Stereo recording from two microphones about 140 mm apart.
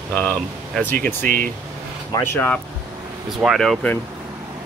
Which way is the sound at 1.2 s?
75° right (ahead or behind).